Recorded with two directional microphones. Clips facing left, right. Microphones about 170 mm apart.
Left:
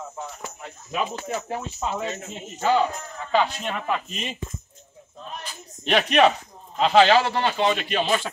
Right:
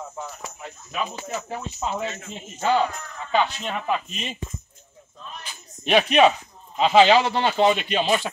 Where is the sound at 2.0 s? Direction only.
40° left (ahead or behind).